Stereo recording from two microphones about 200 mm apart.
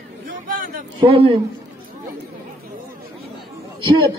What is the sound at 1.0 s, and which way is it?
Speech, 25° right (ahead or behind).